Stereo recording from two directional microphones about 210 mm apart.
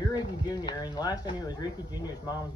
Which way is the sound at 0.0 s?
20° left (ahead or behind).